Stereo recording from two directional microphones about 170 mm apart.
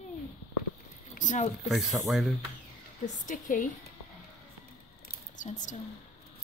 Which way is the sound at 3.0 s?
50° left (ahead or behind).